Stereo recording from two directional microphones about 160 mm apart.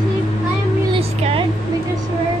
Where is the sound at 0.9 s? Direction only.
35° right (ahead or behind).